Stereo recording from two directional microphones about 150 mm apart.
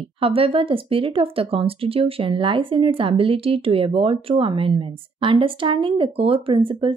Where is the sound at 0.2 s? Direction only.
40° right (ahead or behind).